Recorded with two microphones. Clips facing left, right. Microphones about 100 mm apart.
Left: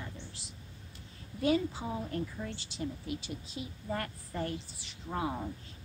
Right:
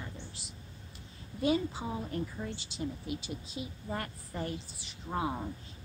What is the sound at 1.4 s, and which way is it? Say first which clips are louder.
Speech: even; 20° right (ahead or behind).